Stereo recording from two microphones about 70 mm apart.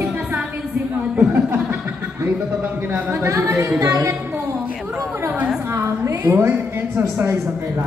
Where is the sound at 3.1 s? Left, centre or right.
Right.